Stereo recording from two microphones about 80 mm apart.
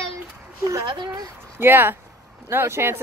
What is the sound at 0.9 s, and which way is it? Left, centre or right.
Speech, right.